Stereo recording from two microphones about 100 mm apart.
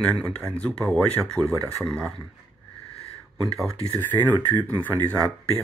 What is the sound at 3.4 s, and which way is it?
Speech, centre (ahead or behind).